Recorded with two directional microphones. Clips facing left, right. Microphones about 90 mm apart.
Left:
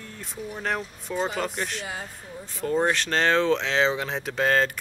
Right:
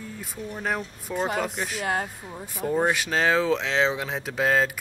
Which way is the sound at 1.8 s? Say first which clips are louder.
Right 8 dB; 60° right (ahead or behind).